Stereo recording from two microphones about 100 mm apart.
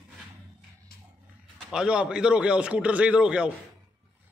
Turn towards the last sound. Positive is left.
turn(degrees=-10)  # may be behind; listen again after turning